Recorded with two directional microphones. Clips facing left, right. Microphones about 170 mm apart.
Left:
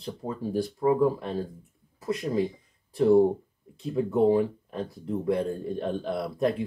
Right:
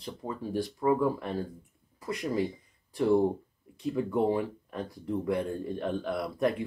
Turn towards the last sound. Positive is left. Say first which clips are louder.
# left 2 dB
turn(degrees=25)  # may be behind; listen again after turning